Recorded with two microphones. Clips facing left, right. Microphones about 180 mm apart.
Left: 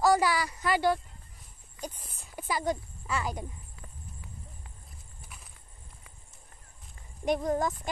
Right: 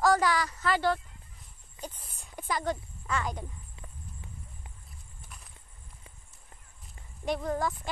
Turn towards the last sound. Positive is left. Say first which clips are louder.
# left 3 dB
turn(degrees=20)  # may be behind; listen again after turning